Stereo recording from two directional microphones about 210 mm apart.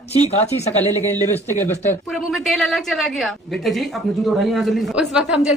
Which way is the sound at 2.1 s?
Centre (ahead or behind).